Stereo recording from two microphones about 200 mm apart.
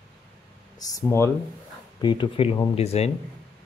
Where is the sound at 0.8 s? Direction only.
15° left (ahead or behind).